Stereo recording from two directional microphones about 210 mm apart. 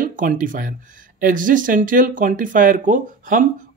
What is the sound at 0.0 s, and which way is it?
Speech, 40° right (ahead or behind).